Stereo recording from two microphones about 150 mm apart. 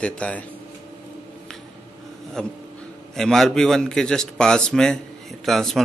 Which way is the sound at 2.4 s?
5° left (ahead or behind).